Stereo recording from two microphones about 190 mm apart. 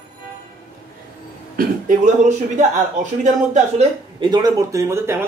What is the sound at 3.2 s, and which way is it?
Speech, 40° right (ahead or behind).